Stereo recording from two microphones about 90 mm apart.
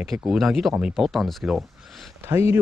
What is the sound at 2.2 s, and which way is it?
Speech, 30° right (ahead or behind).